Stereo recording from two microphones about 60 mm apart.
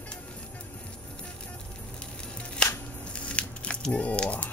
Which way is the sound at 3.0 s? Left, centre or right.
Centre.